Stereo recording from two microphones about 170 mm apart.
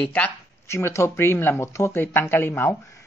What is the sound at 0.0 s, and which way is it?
Speech, 10° left (ahead or behind).